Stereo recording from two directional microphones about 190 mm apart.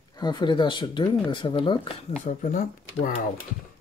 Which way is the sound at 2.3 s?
40° left (ahead or behind).